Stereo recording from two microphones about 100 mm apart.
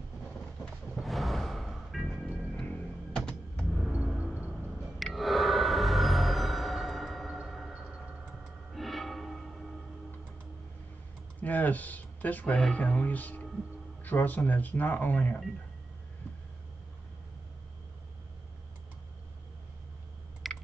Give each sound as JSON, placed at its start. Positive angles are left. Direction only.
{"t": 0.9, "sound": "music", "side_deg": 0}
{"t": 2.4, "sound": "music", "side_deg": 10}
{"t": 4.2, "sound": "vehicle", "side_deg": -15}
{"t": 4.9, "sound": "music", "side_deg": 0}
{"t": 11.4, "sound": "speech", "side_deg": 15}
{"t": 20.4, "sound": "chewing", "side_deg": 0}